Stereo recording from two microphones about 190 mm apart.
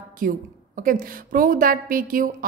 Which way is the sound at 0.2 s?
50° right (ahead or behind).